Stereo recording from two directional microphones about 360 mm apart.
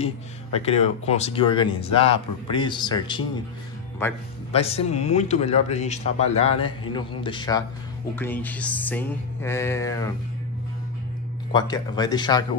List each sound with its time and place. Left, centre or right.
0.0 s speech: centre
4.5 s speech: centre
8.2 s music: centre
11.5 s speech: centre